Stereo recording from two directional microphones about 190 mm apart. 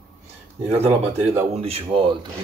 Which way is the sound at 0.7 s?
30° right (ahead or behind).